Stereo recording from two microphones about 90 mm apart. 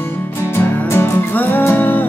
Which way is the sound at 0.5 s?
25° left (ahead or behind).